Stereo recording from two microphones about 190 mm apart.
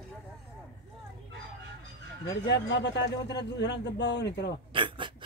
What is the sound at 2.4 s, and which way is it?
A man's voice, 65° left (ahead or behind).